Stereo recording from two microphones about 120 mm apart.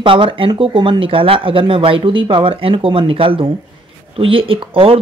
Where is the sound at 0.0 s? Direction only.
45° right (ahead or behind).